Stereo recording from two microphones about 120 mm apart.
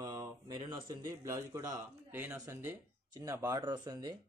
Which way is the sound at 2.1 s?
20° right (ahead or behind).